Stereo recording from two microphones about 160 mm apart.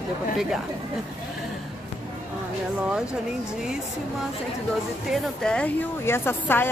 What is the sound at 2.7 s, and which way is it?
Speech, 5° right (ahead or behind).